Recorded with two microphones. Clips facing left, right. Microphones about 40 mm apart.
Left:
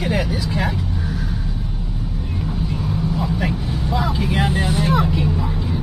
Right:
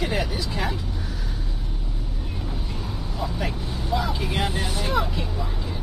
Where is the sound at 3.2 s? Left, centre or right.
Centre.